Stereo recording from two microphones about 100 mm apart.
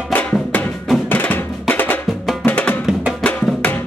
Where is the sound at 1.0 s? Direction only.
20° left (ahead or behind).